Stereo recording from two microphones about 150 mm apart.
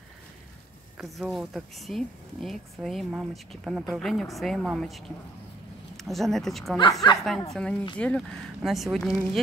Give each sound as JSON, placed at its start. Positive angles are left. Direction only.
{"t": 0.9, "sound": "speech", "side_deg": 0}
{"t": 6.8, "sound": "speech", "side_deg": 25}
{"t": 7.5, "sound": "speech", "side_deg": 5}